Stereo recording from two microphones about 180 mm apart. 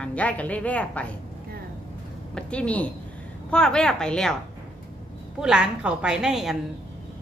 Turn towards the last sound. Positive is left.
turn(degrees=0)  # may be behind; listen again after turning